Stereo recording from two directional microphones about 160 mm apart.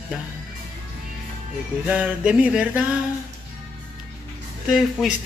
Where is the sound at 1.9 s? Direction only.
5° right (ahead or behind).